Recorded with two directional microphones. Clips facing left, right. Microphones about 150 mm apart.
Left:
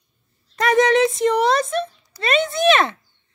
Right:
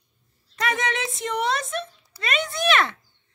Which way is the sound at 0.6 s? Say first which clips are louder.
Left 11 dB; 40° left (ahead or behind).